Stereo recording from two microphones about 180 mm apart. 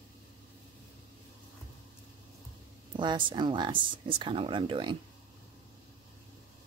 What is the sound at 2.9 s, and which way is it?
Speech, 25° right (ahead or behind).